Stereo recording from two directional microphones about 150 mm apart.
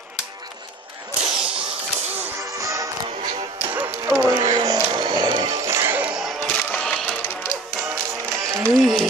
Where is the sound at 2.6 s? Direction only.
20° right (ahead or behind).